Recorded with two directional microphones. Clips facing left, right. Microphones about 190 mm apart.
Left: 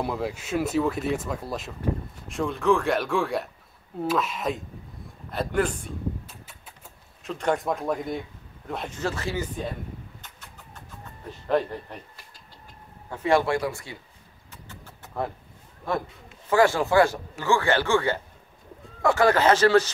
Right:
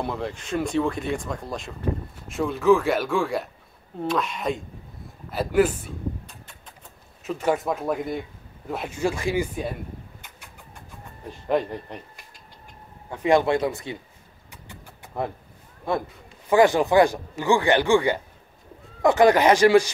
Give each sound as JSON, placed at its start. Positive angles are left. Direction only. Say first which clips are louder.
{"t": 0.0, "sound": "speech", "louder": "even", "side_deg": 5}
{"t": 10.2, "sound": "vehicle", "louder": "right 1 dB", "side_deg": -10}
{"t": 13.1, "sound": "speech", "louder": "right 3 dB", "side_deg": -15}
{"t": 14.5, "sound": "vehicle", "louder": "right 1 dB", "side_deg": -15}
{"t": 16.4, "sound": "speech", "louder": "right 3 dB", "side_deg": -15}